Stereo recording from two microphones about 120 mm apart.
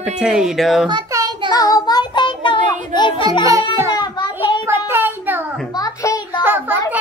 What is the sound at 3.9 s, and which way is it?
Child singing, 40° left (ahead or behind).